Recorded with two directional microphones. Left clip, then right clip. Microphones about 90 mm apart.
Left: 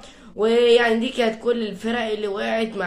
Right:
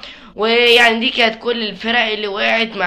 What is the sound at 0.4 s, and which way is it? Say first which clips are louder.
A man's voice: right 5 dB; 45° left (ahead or behind).